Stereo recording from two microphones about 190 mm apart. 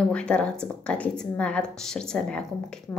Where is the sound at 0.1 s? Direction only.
5° left (ahead or behind).